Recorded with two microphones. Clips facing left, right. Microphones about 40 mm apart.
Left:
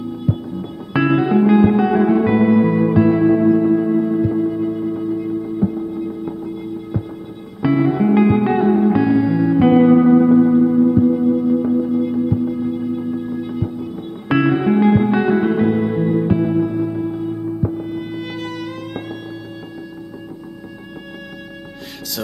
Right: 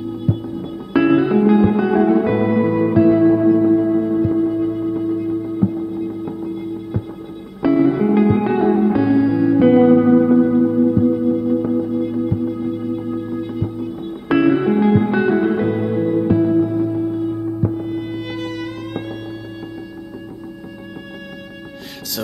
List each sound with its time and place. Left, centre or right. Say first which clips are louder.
0.3 s music: even; centre
7.6 s music: right 1 dB; centre
16.3 s music: right 2 dB; left
17.1 s music: right 2 dB; centre